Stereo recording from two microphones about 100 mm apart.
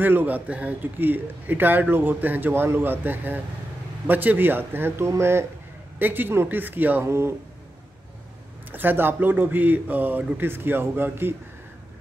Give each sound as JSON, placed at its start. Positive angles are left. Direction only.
{"t": 0.0, "sound": "speech", "side_deg": -20}
{"t": 8.7, "sound": "speech", "side_deg": -20}